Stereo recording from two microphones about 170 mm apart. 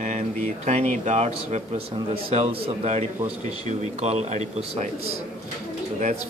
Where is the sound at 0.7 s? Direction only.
40° right (ahead or behind).